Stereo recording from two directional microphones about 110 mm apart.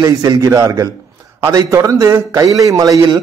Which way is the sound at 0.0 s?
35° right (ahead or behind).